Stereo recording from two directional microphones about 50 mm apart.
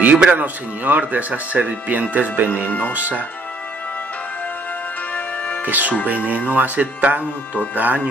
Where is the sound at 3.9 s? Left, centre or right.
Left.